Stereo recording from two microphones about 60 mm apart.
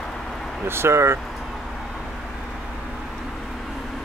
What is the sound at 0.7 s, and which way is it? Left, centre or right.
Speech, right.